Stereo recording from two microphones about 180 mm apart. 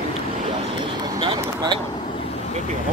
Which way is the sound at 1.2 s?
25° right (ahead or behind).